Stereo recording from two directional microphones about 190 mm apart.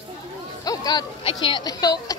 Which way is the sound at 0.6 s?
20° left (ahead or behind).